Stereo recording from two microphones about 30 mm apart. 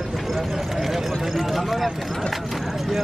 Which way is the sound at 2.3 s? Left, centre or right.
Centre.